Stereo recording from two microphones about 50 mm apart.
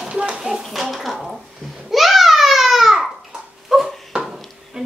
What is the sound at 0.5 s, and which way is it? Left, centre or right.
Babbling, centre.